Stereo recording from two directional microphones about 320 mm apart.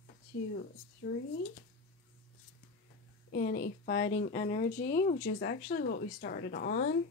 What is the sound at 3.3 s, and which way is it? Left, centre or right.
Speech, left.